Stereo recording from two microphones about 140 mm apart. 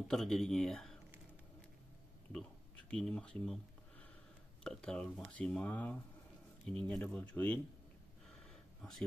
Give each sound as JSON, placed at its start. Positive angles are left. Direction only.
{"t": 0.1, "sound": "speech", "side_deg": 0}
{"t": 2.3, "sound": "speech", "side_deg": 5}
{"t": 4.6, "sound": "speech", "side_deg": 5}